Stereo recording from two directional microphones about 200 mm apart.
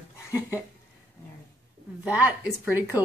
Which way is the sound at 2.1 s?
5° right (ahead or behind).